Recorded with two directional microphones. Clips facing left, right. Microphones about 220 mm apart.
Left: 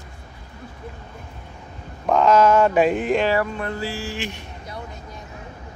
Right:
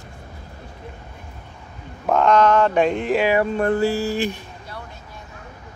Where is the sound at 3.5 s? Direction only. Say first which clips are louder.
Right 9 dB; 50° right (ahead or behind).